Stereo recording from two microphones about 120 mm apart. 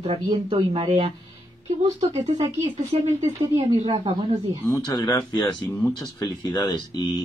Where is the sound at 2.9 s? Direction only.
55° right (ahead or behind).